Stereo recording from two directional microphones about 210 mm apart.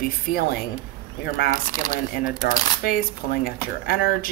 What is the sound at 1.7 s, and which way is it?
Speech, 20° left (ahead or behind).